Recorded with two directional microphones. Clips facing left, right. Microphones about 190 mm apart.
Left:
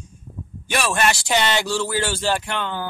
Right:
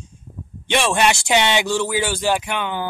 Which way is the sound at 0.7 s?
25° right (ahead or behind).